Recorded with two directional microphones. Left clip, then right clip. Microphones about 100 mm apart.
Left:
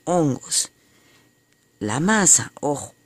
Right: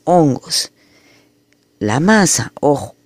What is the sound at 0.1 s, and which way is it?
Speech, 10° right (ahead or behind).